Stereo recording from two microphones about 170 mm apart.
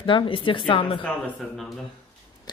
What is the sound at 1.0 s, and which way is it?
Speech, 5° left (ahead or behind).